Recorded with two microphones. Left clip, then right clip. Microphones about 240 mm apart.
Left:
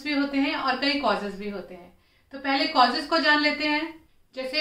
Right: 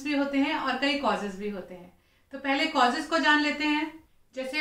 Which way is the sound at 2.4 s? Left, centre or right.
Centre.